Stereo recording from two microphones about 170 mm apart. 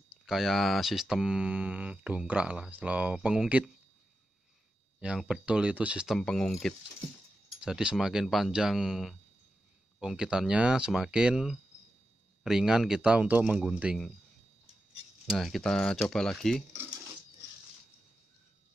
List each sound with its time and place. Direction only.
0.3 s speech: centre (ahead or behind)
5.0 s speech: 5° right (ahead or behind)
15.2 s speech: centre (ahead or behind)